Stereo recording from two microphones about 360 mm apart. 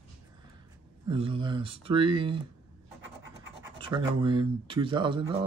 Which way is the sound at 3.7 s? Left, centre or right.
Centre.